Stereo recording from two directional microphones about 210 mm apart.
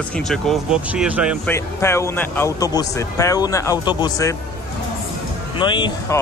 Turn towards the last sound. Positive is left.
turn(degrees=20)  # may be behind; listen again after turning